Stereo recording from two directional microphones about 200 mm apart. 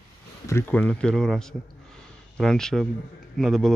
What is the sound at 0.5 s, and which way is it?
A man's voice, 10° left (ahead or behind).